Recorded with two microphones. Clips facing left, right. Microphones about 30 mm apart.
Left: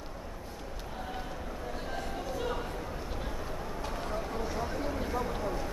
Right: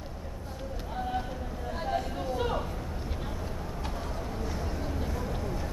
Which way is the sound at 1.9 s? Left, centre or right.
Right.